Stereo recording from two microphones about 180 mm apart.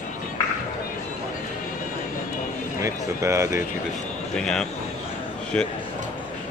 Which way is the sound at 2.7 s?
15° right (ahead or behind).